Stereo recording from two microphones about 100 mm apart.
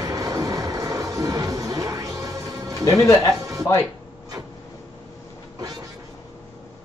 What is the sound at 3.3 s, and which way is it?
Music, 35° right (ahead or behind).